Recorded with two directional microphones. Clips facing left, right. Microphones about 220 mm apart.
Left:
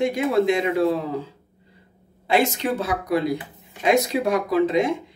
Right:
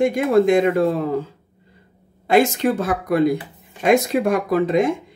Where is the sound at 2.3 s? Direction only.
50° right (ahead or behind).